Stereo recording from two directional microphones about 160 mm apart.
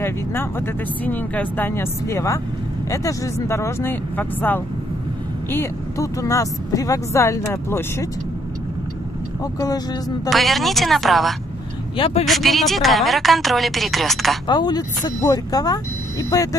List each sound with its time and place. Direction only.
0.0 s speech: 15° left (ahead or behind)
9.4 s speech: 25° left (ahead or behind)
10.3 s a woman's voice: centre (ahead or behind)
12.0 s speech: 40° left (ahead or behind)
12.3 s a woman's voice: centre (ahead or behind)
14.5 s speech: 25° left (ahead or behind)